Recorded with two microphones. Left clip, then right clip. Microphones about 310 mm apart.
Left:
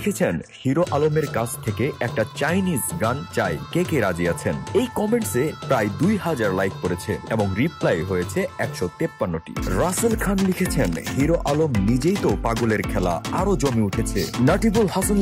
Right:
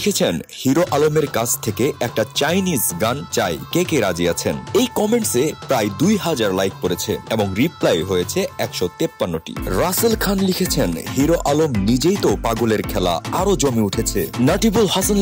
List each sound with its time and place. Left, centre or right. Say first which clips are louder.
0.0 s speech: right 4 dB; right